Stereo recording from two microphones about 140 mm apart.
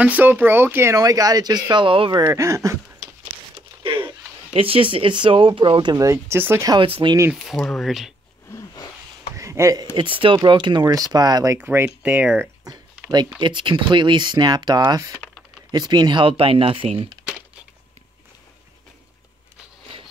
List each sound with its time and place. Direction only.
0.0 s speech: 10° right (ahead or behind); by 2.2 s 35° right (ahead or behind)
2.2 s speech: 20° right (ahead or behind)
4.6 s speech: 40° right (ahead or behind); by 6.7 s 15° right (ahead or behind)
6.7 s speech: 40° right (ahead or behind)
7.3 s speech: centre (ahead or behind)
8.5 s a sound: 25° left (ahead or behind)
9.3 s a sound: 20° right (ahead or behind)
9.9 s speech: 40° right (ahead or behind)
11.6 s speech: 15° right (ahead or behind)
12.7 s a sound: 25° right (ahead or behind)
13.4 s speech: 35° right (ahead or behind)